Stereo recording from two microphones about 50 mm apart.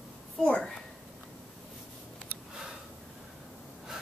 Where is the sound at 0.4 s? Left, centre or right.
Centre.